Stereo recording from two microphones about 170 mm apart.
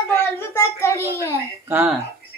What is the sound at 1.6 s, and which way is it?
Speech, 15° right (ahead or behind).